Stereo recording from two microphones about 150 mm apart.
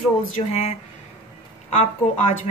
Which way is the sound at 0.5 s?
45° left (ahead or behind).